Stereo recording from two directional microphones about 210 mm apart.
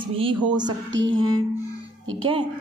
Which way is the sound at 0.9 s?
65° right (ahead or behind).